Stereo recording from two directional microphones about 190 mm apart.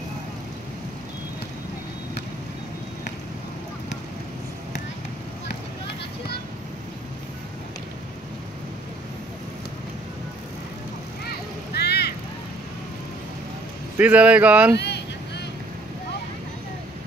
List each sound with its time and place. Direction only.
11.2 s vehicle: 60° left (ahead or behind)
13.9 s speech: 10° right (ahead or behind)
14.8 s vehicle: 60° left (ahead or behind)